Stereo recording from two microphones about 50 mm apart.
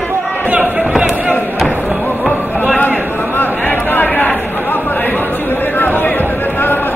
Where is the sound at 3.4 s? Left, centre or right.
Left.